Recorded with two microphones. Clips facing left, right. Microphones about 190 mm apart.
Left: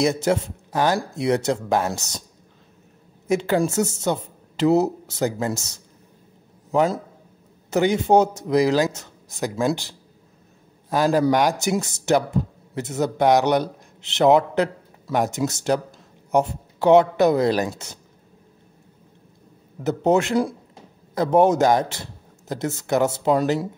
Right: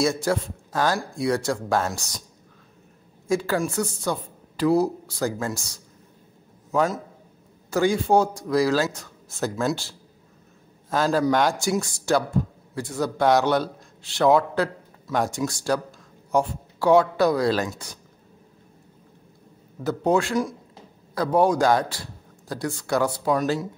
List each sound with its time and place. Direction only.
0.0 s a woman's voice: 20° left (ahead or behind)
3.3 s a woman's voice: 20° left (ahead or behind)
7.7 s a woman's voice: 20° left (ahead or behind)
19.8 s a woman's voice: 20° left (ahead or behind)